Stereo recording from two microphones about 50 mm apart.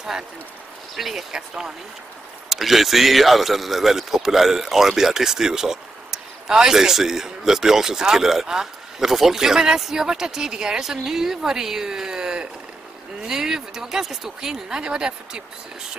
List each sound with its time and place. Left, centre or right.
0.9 s a man's voice: centre